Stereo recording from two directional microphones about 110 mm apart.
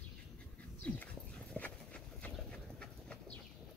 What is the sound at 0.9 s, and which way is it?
Dog, 10° left (ahead or behind).